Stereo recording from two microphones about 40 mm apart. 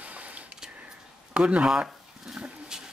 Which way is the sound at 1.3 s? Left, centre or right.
Right.